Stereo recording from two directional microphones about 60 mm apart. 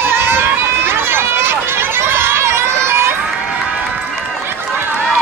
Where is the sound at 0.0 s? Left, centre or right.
Right.